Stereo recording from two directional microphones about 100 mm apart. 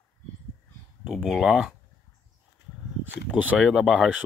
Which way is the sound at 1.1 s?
Centre (ahead or behind).